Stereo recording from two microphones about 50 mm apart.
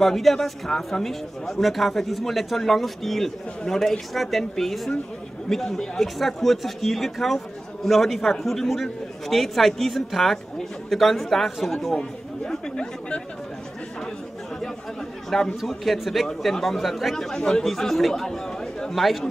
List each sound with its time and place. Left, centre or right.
0.0 s speech: centre
11.9 s chatter: centre
15.2 s speech: centre
17.1 s speech: centre